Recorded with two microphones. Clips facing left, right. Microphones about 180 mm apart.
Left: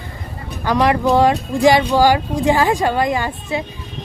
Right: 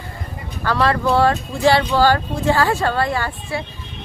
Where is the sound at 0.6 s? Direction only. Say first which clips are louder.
Left 3 dB; 15° left (ahead or behind).